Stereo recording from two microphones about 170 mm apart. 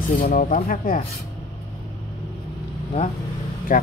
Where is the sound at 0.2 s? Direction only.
50° left (ahead or behind).